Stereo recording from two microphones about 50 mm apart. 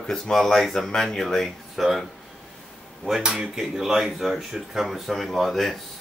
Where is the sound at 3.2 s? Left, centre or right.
Centre.